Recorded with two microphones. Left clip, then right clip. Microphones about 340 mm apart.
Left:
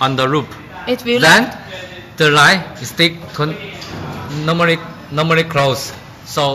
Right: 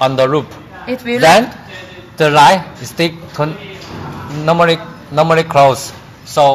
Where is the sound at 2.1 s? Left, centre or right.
Centre.